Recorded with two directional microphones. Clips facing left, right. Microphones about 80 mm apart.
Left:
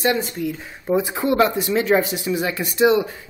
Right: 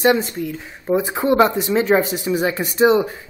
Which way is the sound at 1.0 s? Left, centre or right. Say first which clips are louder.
Right 4 dB; right.